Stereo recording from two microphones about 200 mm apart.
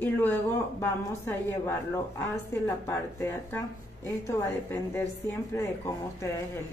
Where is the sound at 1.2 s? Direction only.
10° left (ahead or behind).